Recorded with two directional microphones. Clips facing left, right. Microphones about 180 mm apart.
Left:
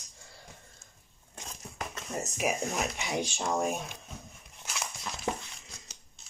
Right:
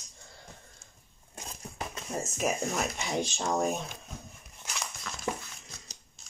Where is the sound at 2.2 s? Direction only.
10° left (ahead or behind).